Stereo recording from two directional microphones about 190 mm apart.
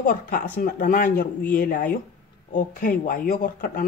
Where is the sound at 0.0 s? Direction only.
45° left (ahead or behind).